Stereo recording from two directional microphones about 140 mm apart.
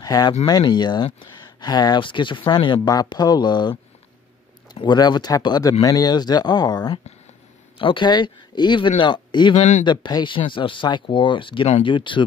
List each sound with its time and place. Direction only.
0.0 s speech: 30° left (ahead or behind)
4.7 s speech: 30° left (ahead or behind)
9.6 s speech: 60° left (ahead or behind)
9.8 s speech: 30° left (ahead or behind)